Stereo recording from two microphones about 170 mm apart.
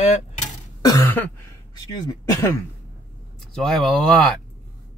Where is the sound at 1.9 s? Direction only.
20° left (ahead or behind).